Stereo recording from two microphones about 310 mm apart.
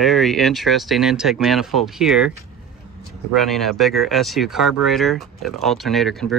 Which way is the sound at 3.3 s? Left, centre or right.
Centre.